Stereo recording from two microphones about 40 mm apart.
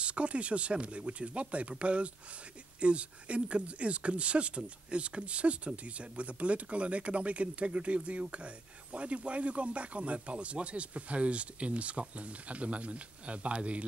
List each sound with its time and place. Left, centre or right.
0.0 s speech: right